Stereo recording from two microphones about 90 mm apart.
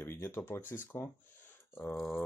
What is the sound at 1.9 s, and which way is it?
Speech, centre (ahead or behind).